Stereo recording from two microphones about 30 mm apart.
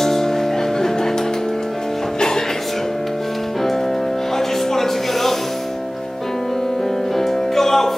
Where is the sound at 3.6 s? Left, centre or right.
Centre.